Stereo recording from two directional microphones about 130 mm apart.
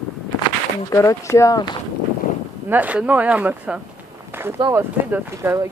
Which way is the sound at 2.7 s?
10° right (ahead or behind).